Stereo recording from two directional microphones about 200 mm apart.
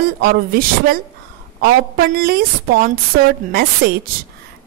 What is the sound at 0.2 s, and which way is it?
A woman's voice, 50° right (ahead or behind).